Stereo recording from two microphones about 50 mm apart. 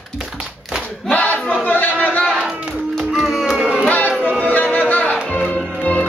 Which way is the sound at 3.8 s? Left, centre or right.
Left.